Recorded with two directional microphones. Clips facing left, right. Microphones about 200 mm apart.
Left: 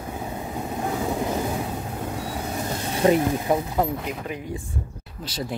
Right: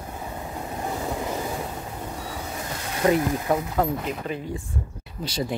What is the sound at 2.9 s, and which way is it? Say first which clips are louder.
Speech: left 2 dB; 25° left (ahead or behind).